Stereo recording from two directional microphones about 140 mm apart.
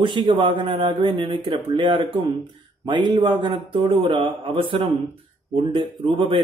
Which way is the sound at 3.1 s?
35° right (ahead or behind).